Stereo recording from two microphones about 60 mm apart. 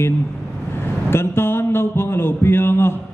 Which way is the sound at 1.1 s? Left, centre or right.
Left.